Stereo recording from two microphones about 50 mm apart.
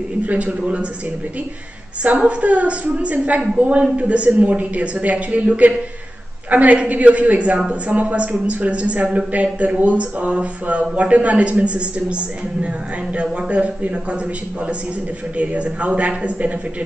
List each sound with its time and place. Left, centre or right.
0.2 s a man's voice: right
2.0 s a man's voice: right
13.1 s a man's voice: right
15.3 s a man's voice: right